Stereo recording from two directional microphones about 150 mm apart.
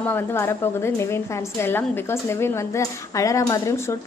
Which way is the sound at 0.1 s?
15° left (ahead or behind).